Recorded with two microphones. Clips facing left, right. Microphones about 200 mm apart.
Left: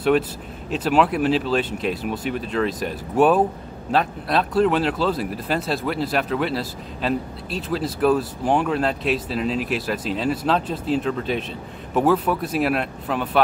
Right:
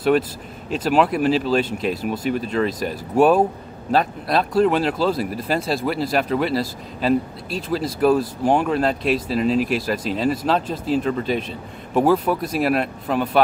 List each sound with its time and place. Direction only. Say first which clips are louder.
0.7 s speech: right 1 dB; centre (ahead or behind)